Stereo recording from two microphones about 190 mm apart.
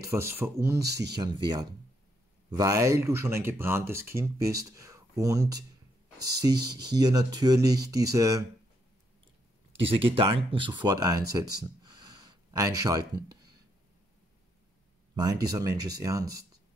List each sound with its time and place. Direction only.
0.1 s speech: 10° right (ahead or behind)
9.7 s speech: 30° right (ahead or behind)
15.5 s speech: 20° right (ahead or behind)